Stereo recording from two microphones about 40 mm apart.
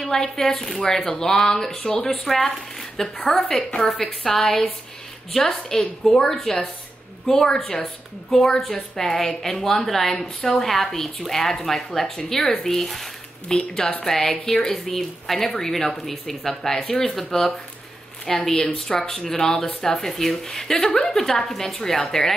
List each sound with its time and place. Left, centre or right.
0.0 s a woman's voice: centre
5.7 s a woman's voice: centre
8.3 s a woman's voice: centre
13.5 s a woman's voice: left
14.0 s a woman's voice: centre